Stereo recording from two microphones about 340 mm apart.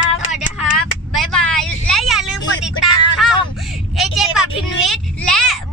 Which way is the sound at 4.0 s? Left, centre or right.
Centre.